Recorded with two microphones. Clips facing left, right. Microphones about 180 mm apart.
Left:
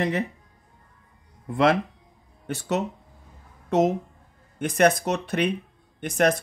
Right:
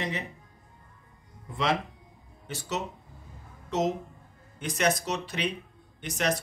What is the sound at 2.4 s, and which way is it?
Speech, 55° left (ahead or behind).